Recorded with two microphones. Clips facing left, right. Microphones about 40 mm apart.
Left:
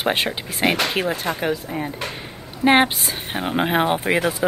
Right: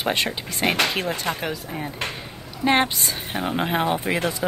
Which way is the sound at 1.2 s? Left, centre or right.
Left.